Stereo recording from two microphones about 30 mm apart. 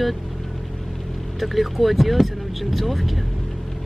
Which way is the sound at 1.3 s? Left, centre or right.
Centre.